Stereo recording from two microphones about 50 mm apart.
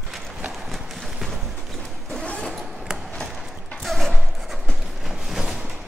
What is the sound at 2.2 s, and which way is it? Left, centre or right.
Vehicle, left.